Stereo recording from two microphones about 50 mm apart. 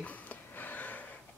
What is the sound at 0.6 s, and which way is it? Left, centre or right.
Gasp, left.